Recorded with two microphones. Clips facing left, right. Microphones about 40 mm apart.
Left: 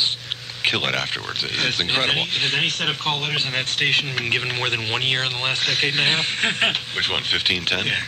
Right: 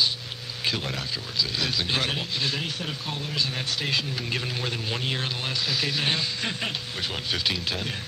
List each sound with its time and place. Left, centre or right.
0.7 s speech: left
1.9 s speech: left
2.1 s speech: left
3.3 s speech: left